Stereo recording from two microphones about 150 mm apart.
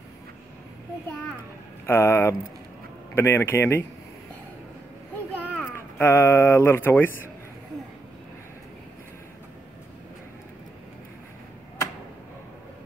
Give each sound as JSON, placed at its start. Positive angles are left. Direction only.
{"t": 1.9, "sound": "speech", "side_deg": 15}
{"t": 5.4, "sound": "speech", "side_deg": 10}